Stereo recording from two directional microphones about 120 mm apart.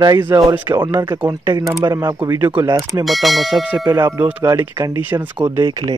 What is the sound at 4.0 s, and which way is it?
Speech, 20° right (ahead or behind).